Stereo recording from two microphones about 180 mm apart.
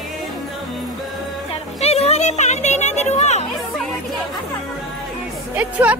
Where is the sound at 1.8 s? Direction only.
35° left (ahead or behind).